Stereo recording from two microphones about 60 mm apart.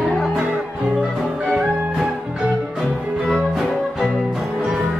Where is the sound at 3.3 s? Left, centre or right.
Centre.